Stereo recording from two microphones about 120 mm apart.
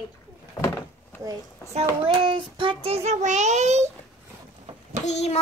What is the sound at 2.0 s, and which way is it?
Child singing, 45° right (ahead or behind).